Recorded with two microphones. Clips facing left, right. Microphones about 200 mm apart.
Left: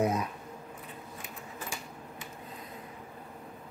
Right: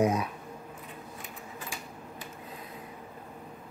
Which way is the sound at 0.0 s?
10° right (ahead or behind).